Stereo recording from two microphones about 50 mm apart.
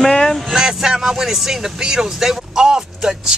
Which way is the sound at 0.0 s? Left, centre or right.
Centre.